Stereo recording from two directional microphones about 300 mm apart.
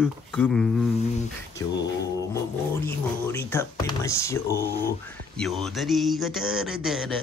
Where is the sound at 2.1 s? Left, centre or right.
Centre.